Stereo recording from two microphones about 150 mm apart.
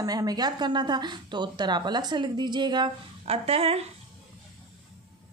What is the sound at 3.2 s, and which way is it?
Speech, 40° right (ahead or behind).